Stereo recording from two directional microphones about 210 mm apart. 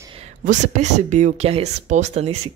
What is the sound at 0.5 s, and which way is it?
Speech, 35° right (ahead or behind).